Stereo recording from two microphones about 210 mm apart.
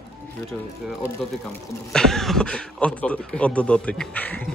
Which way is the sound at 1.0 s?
5° left (ahead or behind).